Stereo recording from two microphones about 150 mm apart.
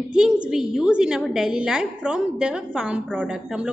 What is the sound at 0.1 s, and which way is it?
A woman's voice, 5° right (ahead or behind).